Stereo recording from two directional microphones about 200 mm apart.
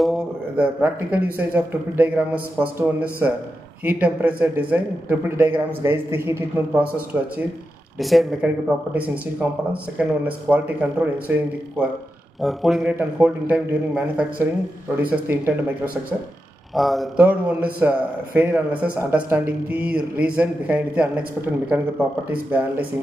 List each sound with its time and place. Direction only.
0.0 s a man's voice: 5° right (ahead or behind)
12.4 s a man's voice: centre (ahead or behind)